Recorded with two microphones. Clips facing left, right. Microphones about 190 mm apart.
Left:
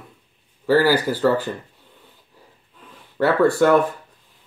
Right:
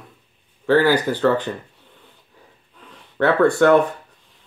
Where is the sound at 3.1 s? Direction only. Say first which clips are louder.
Right 1 dB; 5° left (ahead or behind).